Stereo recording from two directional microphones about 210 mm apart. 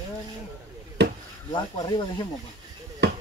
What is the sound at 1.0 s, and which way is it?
Chop, 50° right (ahead or behind).